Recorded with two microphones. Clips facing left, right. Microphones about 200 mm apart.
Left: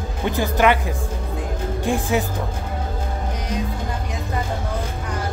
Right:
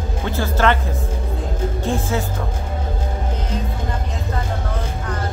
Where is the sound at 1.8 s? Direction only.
15° left (ahead or behind).